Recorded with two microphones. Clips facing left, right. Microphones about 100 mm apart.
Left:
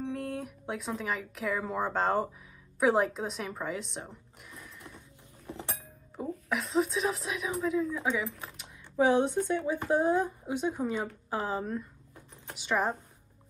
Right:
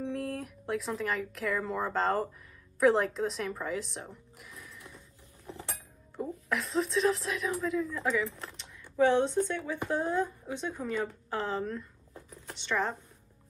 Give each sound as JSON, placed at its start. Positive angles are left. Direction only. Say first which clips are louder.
{"t": 0.0, "sound": "speech", "louder": "even", "side_deg": 0}
{"t": 6.1, "sound": "a woman's voice", "louder": "even", "side_deg": 0}